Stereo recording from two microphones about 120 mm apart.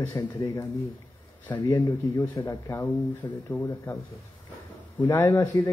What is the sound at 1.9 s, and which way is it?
Speech, 25° left (ahead or behind).